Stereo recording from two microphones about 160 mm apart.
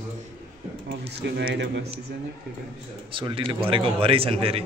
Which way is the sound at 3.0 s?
30° right (ahead or behind).